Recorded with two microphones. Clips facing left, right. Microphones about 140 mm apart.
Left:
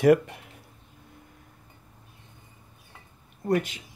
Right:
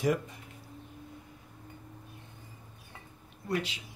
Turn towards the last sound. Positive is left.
turn(degrees=50)  # may be behind; listen again after turning